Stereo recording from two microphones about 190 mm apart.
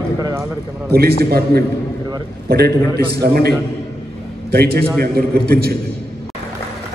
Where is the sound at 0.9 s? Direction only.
55° right (ahead or behind).